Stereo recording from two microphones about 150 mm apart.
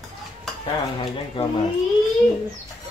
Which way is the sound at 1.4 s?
35° left (ahead or behind).